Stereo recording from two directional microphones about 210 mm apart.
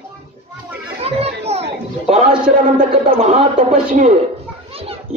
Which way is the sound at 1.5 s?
30° right (ahead or behind).